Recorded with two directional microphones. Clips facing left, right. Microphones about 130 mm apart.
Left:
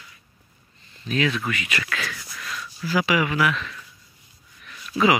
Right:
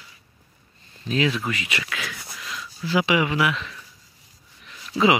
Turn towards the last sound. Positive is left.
turn(degrees=-25)  # may be behind; listen again after turning